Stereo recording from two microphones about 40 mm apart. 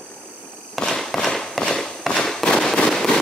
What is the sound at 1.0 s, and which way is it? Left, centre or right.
Firecracker, centre.